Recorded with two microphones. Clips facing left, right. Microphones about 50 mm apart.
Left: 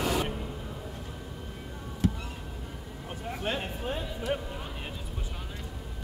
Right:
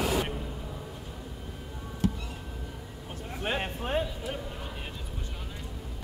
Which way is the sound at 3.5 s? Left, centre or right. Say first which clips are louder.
Right 1 dB; centre.